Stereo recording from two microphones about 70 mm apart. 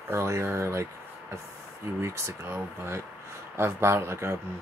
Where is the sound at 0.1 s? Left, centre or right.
Right.